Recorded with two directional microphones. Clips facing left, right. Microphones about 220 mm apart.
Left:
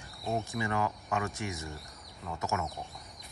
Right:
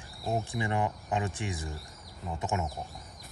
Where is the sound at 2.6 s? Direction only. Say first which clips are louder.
Right 2 dB; centre (ahead or behind).